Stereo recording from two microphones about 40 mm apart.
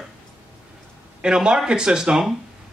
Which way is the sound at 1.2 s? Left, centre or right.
Centre.